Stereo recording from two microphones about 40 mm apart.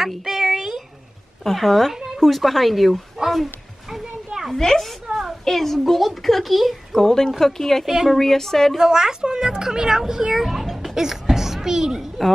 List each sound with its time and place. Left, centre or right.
0.2 s a sound: centre
1.4 s a child's voice: centre
4.6 s a child's voice: centre
6.9 s speech: centre
7.8 s a woman's voice: centre
8.1 s speech: centre
8.7 s a woman's voice: centre